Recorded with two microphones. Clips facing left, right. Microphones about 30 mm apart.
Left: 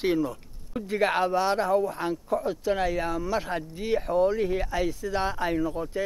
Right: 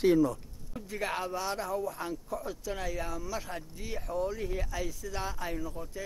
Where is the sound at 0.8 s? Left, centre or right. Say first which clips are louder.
Left 10 dB; left.